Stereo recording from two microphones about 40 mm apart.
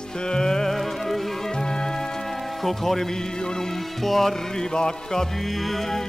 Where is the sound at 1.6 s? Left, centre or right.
Centre.